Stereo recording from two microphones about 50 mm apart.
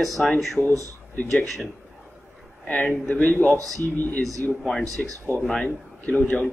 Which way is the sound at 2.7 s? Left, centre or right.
Left.